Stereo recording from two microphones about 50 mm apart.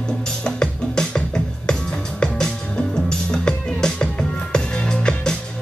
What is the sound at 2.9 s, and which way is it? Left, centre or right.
Music, centre.